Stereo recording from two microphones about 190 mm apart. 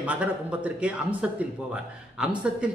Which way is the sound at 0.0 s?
5° right (ahead or behind).